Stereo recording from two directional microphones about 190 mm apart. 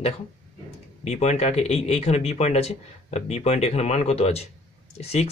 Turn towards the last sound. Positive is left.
turn(degrees=35)  # may be behind; listen again after turning